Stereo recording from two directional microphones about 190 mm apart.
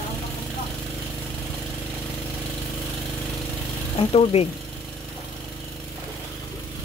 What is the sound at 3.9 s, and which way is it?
Speech, 30° left (ahead or behind).